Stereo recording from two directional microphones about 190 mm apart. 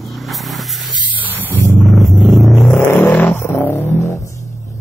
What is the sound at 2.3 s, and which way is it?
Vehicle, centre (ahead or behind).